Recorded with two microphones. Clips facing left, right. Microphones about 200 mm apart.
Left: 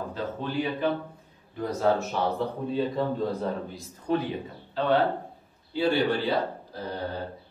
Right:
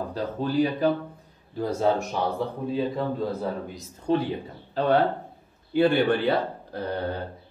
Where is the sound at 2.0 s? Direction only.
10° right (ahead or behind).